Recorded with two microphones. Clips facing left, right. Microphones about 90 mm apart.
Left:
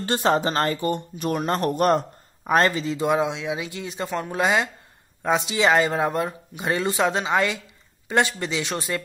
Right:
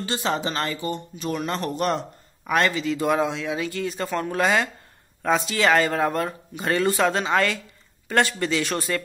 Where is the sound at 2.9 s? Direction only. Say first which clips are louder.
Even; 15° left (ahead or behind).